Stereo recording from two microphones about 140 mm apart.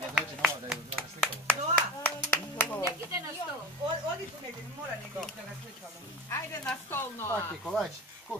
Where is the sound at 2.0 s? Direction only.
15° left (ahead or behind).